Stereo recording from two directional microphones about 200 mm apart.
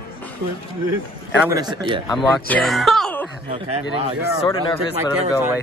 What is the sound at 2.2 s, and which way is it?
Speech, 5° left (ahead or behind).